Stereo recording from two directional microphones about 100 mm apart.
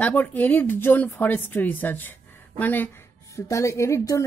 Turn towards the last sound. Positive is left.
turn(degrees=30)  # may be behind; listen again after turning